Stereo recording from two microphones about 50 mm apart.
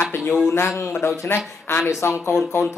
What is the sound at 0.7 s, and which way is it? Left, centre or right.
Speech, left.